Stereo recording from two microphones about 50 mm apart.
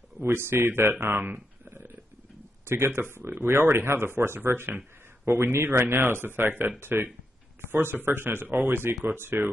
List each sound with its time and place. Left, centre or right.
0.2 s speech: right
1.3 s a sound: right
2.6 s speech: right